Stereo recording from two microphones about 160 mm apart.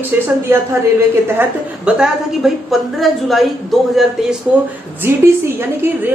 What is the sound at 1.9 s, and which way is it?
Speech, 5° right (ahead or behind).